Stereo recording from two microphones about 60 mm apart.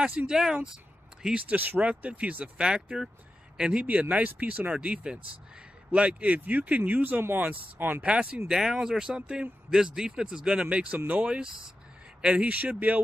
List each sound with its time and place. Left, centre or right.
0.3 s speech: centre; by 8.0 s right
8.0 s speech: centre